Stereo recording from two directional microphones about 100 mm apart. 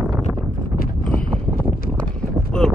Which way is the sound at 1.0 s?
10° left (ahead or behind).